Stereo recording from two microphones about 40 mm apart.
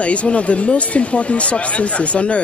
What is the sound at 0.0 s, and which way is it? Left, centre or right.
Speech, left.